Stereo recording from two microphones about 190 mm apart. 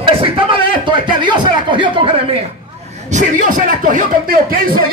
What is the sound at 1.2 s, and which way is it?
Speech, 25° right (ahead or behind).